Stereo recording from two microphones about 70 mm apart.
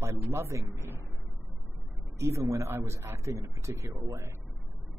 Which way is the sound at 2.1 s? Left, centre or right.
Right.